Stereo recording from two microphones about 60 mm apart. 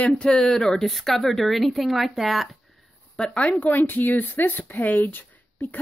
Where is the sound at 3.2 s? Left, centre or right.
Left.